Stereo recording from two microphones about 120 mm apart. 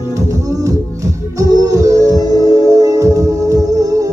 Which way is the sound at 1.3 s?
30° right (ahead or behind).